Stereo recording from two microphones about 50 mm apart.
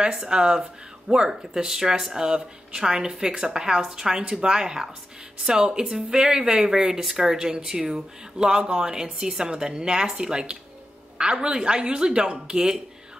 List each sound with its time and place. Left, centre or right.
0.0 s speech: centre